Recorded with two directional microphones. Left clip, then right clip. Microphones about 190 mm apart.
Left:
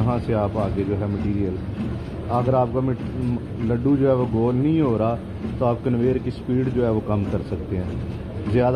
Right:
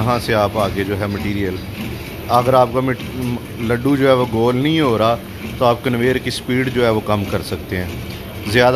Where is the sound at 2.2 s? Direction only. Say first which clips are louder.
Right 8 dB; 30° right (ahead or behind); by 7.2 s 15° right (ahead or behind).